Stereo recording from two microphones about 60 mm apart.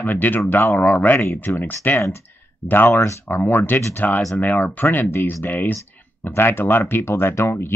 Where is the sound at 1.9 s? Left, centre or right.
Left.